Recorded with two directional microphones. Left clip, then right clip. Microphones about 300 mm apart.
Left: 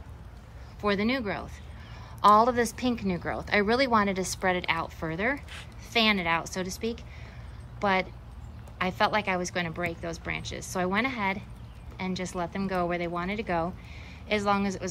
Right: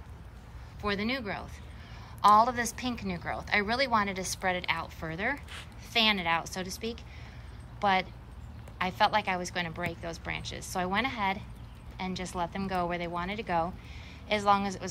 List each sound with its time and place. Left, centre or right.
0.7 s speech: centre